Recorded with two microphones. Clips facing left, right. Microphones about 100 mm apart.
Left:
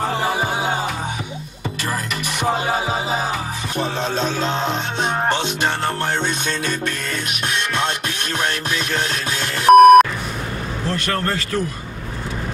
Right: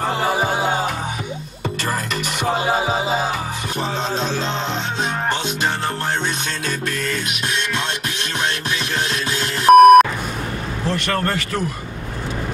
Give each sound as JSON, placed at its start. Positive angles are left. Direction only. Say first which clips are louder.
{"t": 9.7, "sound": "beep", "louder": "even", "side_deg": 0}
{"t": 10.9, "sound": "speech", "louder": "right 1 dB", "side_deg": -20}